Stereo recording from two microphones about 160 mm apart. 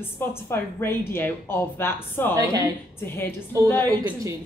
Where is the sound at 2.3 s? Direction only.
20° right (ahead or behind).